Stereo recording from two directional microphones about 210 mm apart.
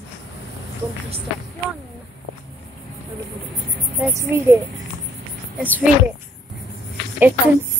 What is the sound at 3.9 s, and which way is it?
Speech, 10° right (ahead or behind).